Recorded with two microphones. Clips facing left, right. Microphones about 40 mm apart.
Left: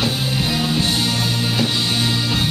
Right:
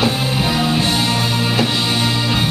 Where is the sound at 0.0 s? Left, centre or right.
Centre.